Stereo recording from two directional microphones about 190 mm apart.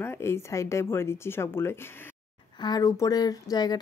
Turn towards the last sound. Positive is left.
turn(degrees=20)  # may be behind; listen again after turning